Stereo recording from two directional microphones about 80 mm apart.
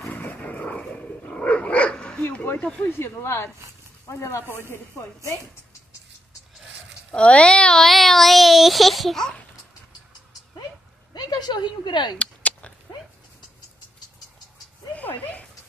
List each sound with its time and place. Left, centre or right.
0.1 s dog: left
2.6 s speech: centre
2.9 s speech: left
7.2 s speech: centre
11.1 s speech: left
12.2 s a sound: centre
15.0 s a sound: centre